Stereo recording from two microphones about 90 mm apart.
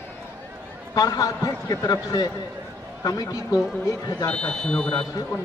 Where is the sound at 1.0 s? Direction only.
45° left (ahead or behind).